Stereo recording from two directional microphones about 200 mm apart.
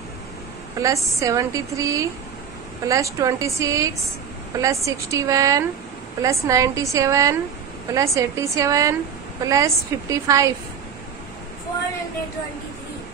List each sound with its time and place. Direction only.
0.8 s a woman's voice: 15° right (ahead or behind)